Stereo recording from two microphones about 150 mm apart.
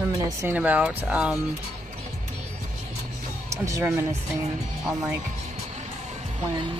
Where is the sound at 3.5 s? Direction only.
20° right (ahead or behind).